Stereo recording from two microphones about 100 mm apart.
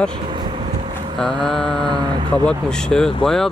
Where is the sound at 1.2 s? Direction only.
5° left (ahead or behind).